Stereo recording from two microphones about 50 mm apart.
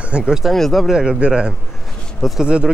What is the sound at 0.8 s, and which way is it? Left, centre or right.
Speech, centre.